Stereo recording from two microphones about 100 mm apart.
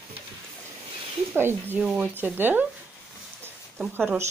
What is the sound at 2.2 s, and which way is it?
Speech, 20° right (ahead or behind).